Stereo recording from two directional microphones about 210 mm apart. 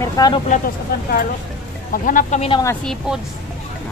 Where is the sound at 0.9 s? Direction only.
50° left (ahead or behind); by 2.6 s 25° left (ahead or behind).